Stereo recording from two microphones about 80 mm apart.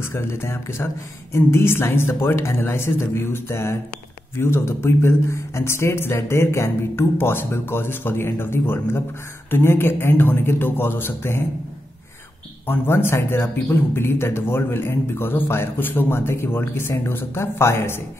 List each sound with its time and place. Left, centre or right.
0.0 s a man's voice: left
12.6 s a man's voice: left